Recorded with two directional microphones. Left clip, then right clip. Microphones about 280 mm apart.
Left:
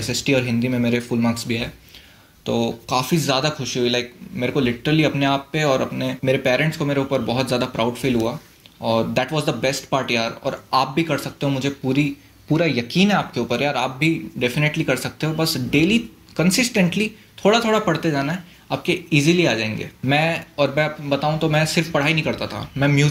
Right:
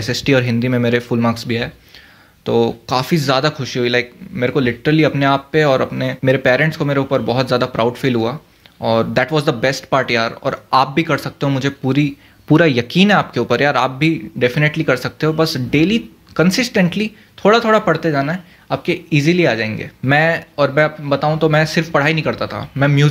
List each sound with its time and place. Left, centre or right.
0.0 s speech: right